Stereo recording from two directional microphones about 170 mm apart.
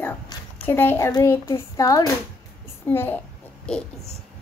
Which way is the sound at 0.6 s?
15° left (ahead or behind).